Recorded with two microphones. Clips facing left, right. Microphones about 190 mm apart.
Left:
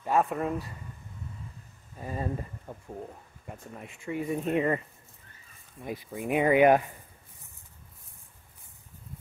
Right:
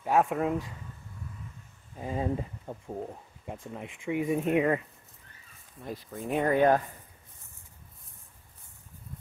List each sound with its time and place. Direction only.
0.0 s speech: 10° right (ahead or behind)
2.0 s speech: 15° right (ahead or behind)
4.1 s speech: 10° right (ahead or behind)
5.8 s speech: 10° left (ahead or behind)